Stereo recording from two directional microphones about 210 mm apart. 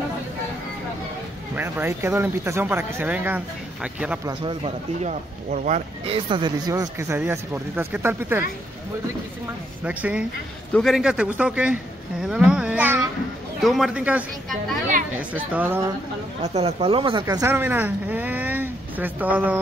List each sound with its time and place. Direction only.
1.5 s speech: 10° right (ahead or behind)
4.4 s speech: 25° right (ahead or behind); by 8.5 s 10° right (ahead or behind)
9.8 s speech: 5° right (ahead or behind)
16.5 s speech: 30° right (ahead or behind); by 19.6 s 10° right (ahead or behind)